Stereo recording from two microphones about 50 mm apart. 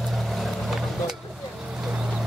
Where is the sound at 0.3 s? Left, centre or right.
Centre.